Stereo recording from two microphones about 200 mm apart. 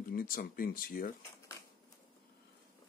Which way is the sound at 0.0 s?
45° left (ahead or behind).